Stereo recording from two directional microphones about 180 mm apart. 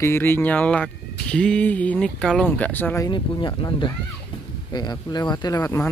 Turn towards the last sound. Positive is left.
turn(degrees=15)  # may be behind; listen again after turning